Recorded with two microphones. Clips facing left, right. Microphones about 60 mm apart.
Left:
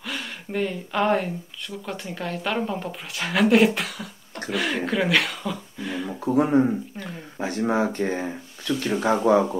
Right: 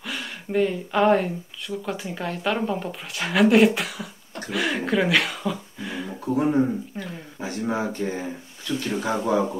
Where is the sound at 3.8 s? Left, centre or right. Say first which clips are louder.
Right 1 dB; centre.